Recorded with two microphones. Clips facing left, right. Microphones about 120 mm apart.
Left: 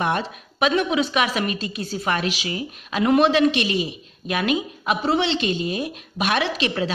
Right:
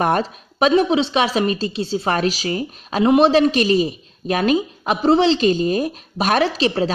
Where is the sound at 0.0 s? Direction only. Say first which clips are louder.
Right 5 dB; 40° right (ahead or behind).